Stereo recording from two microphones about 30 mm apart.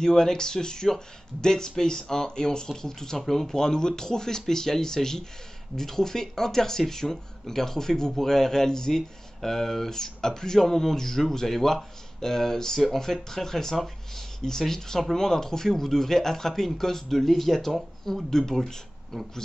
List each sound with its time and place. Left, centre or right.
0.0 s speech: centre